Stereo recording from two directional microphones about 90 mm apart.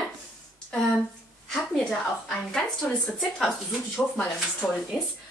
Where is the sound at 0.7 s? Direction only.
10° left (ahead or behind).